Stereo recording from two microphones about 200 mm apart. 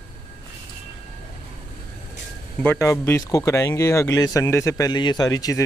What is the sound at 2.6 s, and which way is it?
Speech, 10° left (ahead or behind).